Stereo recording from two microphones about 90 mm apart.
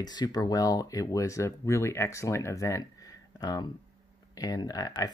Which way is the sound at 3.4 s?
50° left (ahead or behind).